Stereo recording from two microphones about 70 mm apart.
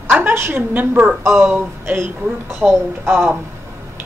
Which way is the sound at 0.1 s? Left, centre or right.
Right.